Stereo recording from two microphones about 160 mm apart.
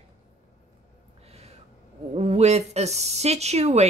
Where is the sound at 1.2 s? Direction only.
40° right (ahead or behind).